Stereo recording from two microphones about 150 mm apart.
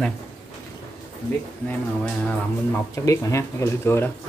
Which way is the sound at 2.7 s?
20° left (ahead or behind).